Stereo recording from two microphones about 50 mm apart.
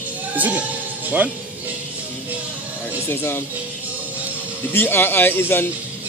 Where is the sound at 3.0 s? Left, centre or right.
Left.